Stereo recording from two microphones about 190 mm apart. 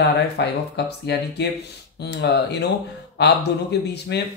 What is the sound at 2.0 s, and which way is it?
Speech, 60° left (ahead or behind).